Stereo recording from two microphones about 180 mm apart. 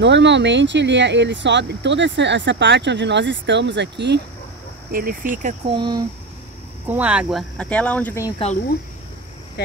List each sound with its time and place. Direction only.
0.0 s speech: 80° right
4.9 s speech: 50° right (ahead or behind)
5.7 s speech: 25° right (ahead or behind)
6.9 s speech: 10° right (ahead or behind); by 8.3 s 10° left (ahead or behind)